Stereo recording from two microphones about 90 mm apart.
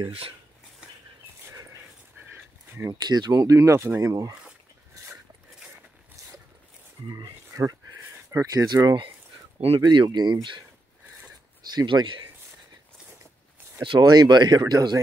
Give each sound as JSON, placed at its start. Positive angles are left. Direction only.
{"t": 0.0, "sound": "speech", "side_deg": -90}
{"t": 1.4, "sound": "dog", "side_deg": -35}
{"t": 2.3, "sound": "a sound", "side_deg": -25}
{"t": 2.9, "sound": "speech", "side_deg": -50}
{"t": 5.0, "sound": "a sound", "side_deg": -40}
{"t": 7.1, "sound": "speech", "side_deg": -45}
{"t": 11.7, "sound": "speech", "side_deg": -55}
{"t": 13.8, "sound": "speech", "side_deg": -50}